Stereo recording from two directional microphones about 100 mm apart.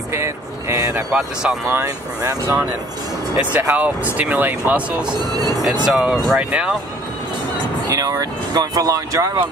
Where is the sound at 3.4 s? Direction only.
15° right (ahead or behind).